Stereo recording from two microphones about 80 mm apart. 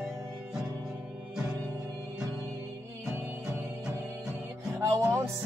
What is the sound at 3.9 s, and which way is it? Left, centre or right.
Music, right.